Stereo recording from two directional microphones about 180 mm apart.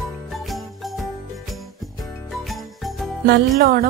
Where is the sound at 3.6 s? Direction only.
55° right (ahead or behind).